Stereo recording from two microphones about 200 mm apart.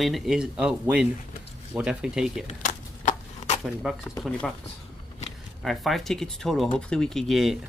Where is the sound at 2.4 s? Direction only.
40° left (ahead or behind).